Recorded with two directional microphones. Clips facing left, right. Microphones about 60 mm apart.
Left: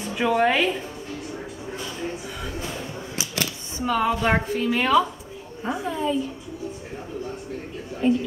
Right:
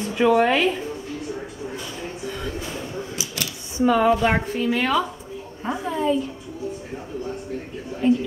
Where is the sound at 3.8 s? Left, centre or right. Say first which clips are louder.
Right 5 dB; centre.